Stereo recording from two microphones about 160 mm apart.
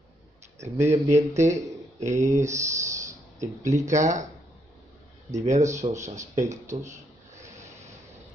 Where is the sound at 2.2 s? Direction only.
20° right (ahead or behind).